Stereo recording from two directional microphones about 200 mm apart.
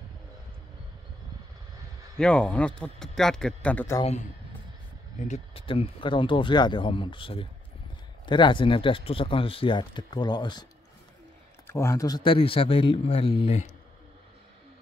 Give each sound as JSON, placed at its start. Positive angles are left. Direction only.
{"t": 2.1, "sound": "speech", "side_deg": 5}
{"t": 5.3, "sound": "speech", "side_deg": 30}
{"t": 11.6, "sound": "speech", "side_deg": 15}